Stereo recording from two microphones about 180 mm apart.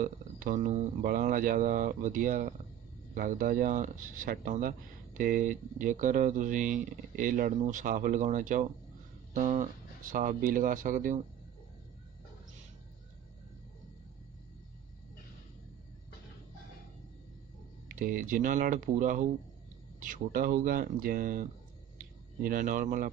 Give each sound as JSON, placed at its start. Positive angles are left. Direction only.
{"t": 0.0, "sound": "speech", "side_deg": -45}
{"t": 17.8, "sound": "speech", "side_deg": -50}
{"t": 21.9, "sound": "a sound", "side_deg": -50}